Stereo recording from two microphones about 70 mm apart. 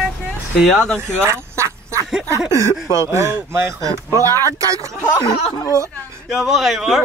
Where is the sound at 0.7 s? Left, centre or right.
Centre.